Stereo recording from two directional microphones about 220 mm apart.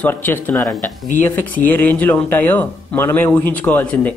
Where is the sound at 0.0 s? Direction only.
10° left (ahead or behind).